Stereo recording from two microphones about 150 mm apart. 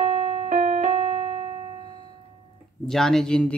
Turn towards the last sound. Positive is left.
turn(degrees=5)  # may be behind; listen again after turning